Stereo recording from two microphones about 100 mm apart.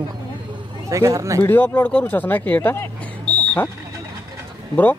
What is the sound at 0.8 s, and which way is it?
Speech, 35° right (ahead or behind).